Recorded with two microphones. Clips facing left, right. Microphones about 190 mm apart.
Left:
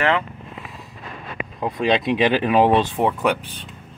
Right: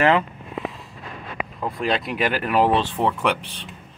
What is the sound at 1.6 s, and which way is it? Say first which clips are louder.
Speech: left 4 dB; 20° left (ahead or behind).